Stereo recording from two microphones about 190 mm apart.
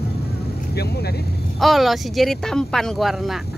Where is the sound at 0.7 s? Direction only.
55° left (ahead or behind).